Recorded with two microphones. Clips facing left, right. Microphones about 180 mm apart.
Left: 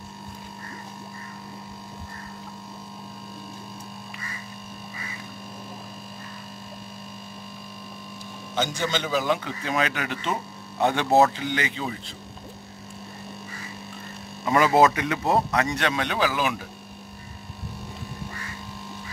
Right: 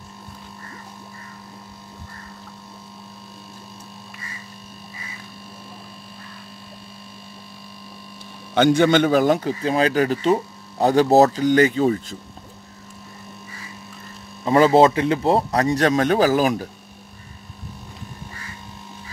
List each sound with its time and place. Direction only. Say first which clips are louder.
8.5 s a man's voice: right 12 dB; 60° right (ahead or behind)
14.4 s a man's voice: right 5 dB; 30° right (ahead or behind)